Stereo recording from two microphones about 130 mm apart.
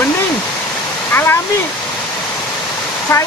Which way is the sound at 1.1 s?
20° left (ahead or behind).